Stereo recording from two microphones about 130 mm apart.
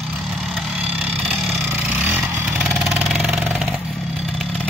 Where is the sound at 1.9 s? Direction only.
10° right (ahead or behind).